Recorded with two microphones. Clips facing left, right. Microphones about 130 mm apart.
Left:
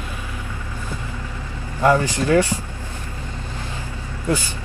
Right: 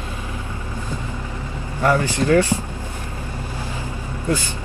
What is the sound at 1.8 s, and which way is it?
Speech, 15° left (ahead or behind).